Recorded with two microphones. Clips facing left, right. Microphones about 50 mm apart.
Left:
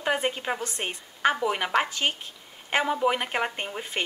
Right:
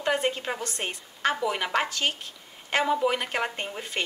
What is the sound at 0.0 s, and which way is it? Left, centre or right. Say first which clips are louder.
A woman's voice: even; centre.